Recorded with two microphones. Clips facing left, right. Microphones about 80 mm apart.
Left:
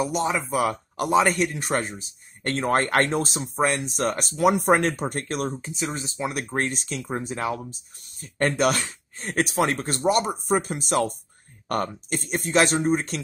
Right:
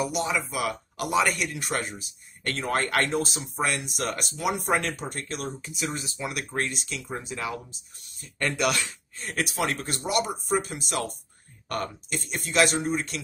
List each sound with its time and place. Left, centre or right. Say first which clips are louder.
0.0 s speech: left 3 dB; left
5.6 s speech: left 2 dB; left